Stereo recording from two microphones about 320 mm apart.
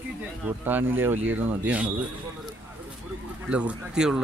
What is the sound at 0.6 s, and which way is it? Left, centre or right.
Speech, centre.